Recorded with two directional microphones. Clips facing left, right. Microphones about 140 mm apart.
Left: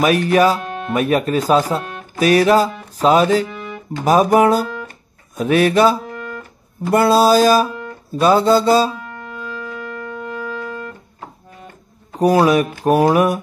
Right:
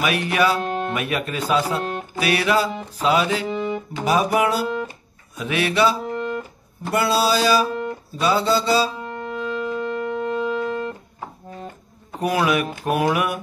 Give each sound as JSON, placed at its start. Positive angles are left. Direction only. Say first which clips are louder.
{"t": 0.0, "sound": "speech", "louder": "left 7 dB", "side_deg": 40}
{"t": 0.6, "sound": "music", "louder": "right 3 dB", "side_deg": -35}
{"t": 0.9, "sound": "speech", "louder": "left 8 dB", "side_deg": 40}
{"t": 3.4, "sound": "music", "louder": "right 6 dB", "side_deg": -30}
{"t": 4.0, "sound": "music", "louder": "left 7 dB", "side_deg": 45}
{"t": 6.1, "sound": "music", "louder": "right 4 dB", "side_deg": -25}
{"t": 6.9, "sound": "music", "louder": "left 7 dB", "side_deg": 45}
{"t": 9.0, "sound": "music", "louder": "right 4 dB", "side_deg": -30}
{"t": 12.2, "sound": "speech", "louder": "left 7 dB", "side_deg": 35}